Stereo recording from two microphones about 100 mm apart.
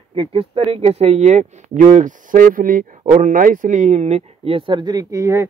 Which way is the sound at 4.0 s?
90° right.